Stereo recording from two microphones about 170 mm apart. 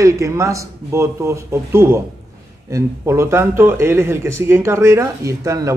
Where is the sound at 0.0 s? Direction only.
20° right (ahead or behind).